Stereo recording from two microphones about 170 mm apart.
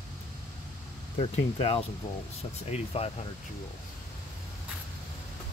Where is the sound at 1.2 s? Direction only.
35° left (ahead or behind).